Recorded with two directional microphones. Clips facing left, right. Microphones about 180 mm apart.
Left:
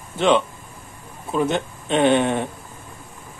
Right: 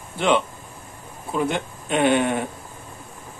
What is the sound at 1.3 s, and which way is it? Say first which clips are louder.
Speech: left 3 dB; 20° left (ahead or behind).